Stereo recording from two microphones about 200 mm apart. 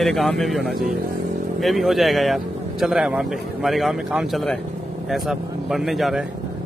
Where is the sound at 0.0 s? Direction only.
Centre (ahead or behind).